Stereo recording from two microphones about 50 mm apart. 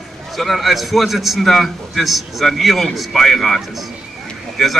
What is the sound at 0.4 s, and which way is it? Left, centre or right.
A man's voice, centre.